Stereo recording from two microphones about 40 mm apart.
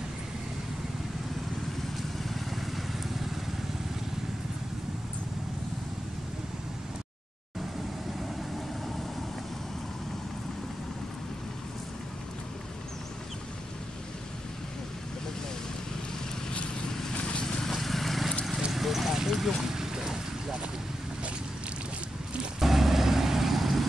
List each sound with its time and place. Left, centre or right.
2.2 s vehicle: centre
17.1 s vehicle: left
17.6 s vehicle: centre
18.7 s a sound: centre
19.7 s vehicle: centre
22.6 s vehicle: centre